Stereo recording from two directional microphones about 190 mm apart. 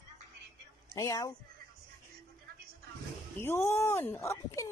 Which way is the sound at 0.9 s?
20° left (ahead or behind).